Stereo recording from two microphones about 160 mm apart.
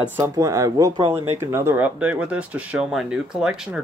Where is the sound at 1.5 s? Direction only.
15° right (ahead or behind).